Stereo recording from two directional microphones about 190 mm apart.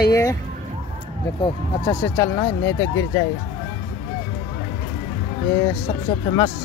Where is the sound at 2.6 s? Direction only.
80° left.